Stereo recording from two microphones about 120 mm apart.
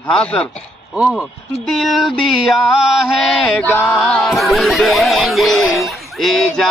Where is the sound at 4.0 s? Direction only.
Centre (ahead or behind).